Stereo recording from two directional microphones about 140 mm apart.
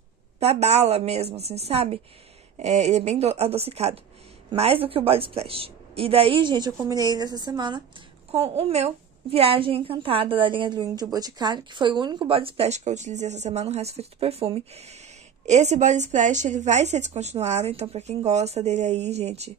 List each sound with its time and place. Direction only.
0.4 s a woman's voice: 50° right (ahead or behind); by 7.8 s 30° right (ahead or behind)
8.3 s a woman's voice: 45° right (ahead or behind)